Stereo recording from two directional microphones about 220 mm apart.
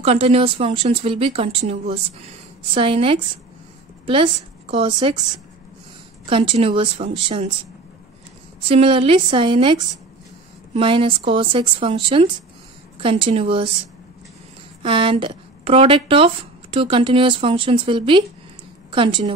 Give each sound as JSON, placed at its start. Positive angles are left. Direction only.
{"t": 0.0, "sound": "a woman's voice", "side_deg": -30}
{"t": 6.2, "sound": "speech", "side_deg": -25}
{"t": 8.6, "sound": "speech", "side_deg": -25}
{"t": 14.8, "sound": "a woman's voice", "side_deg": -25}